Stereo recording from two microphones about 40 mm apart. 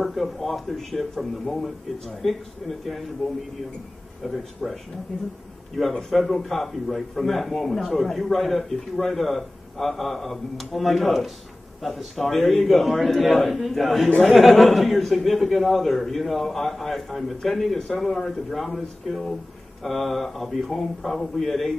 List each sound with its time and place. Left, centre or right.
0.0 s a man's voice: centre
4.2 s a man's voice: centre
5.8 s a man's voice: centre